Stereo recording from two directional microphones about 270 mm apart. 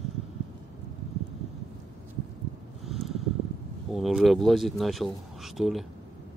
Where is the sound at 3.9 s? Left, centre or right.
Centre.